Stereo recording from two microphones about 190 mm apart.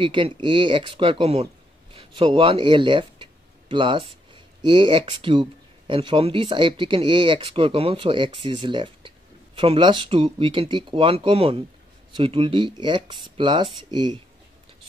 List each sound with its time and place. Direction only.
0.0 s speech: 25° right (ahead or behind)